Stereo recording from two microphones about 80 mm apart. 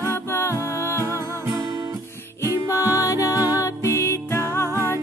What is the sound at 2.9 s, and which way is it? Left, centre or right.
Music, left.